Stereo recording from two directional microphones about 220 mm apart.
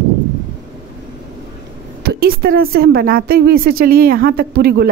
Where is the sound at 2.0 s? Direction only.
45° right (ahead or behind).